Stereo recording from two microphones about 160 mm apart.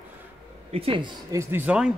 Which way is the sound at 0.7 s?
35° right (ahead or behind).